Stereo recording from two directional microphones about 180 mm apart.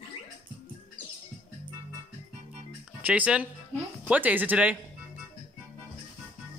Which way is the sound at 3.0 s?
5° right (ahead or behind).